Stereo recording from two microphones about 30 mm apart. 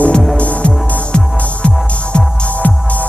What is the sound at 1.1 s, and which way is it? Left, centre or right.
Music, left.